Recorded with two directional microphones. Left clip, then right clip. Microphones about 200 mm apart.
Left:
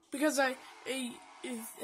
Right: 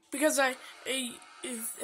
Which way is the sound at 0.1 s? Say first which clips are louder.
Right 3 dB; 5° right (ahead or behind).